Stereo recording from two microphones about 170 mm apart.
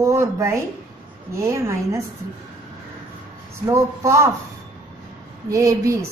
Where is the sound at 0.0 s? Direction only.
15° right (ahead or behind).